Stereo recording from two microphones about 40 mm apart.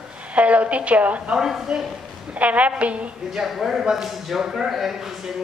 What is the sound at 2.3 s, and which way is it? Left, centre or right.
Speech, right.